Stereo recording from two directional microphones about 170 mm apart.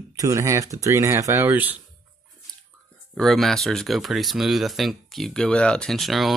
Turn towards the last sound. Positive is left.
turn(degrees=0)  # may be behind; listen again after turning